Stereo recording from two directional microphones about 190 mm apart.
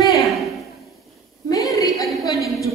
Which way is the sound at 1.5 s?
20° left (ahead or behind).